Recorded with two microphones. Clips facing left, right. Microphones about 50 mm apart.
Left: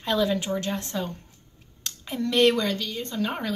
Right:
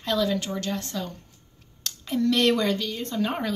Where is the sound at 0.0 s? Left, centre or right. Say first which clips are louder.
Left 1 dB; centre.